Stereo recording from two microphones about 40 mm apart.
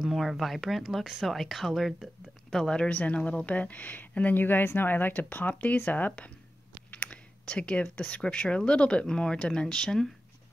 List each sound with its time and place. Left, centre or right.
0.0 s speech: centre
2.5 s speech: centre
2.8 s a woman's voice: left
4.4 s speech: left
6.9 s clicking: left
7.4 s speech: left